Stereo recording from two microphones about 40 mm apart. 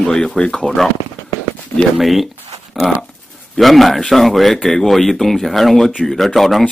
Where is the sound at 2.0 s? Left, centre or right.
Centre.